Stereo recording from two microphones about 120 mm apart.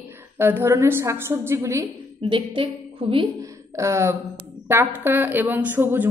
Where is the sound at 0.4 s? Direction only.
20° right (ahead or behind).